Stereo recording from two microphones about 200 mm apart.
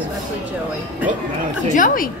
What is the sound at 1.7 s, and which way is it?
Speech, 45° left (ahead or behind).